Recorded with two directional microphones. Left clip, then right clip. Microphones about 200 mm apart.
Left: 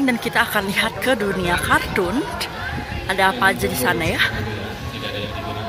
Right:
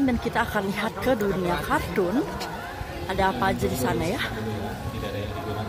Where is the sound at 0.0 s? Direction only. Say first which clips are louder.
Left 6 dB; 10° right (ahead or behind).